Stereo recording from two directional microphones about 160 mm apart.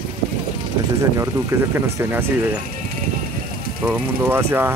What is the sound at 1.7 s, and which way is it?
Speech, 15° right (ahead or behind).